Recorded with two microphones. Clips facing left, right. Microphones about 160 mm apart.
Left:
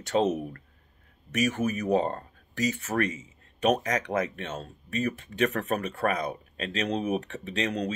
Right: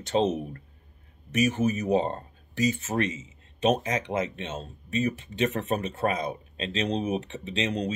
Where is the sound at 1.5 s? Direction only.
25° right (ahead or behind).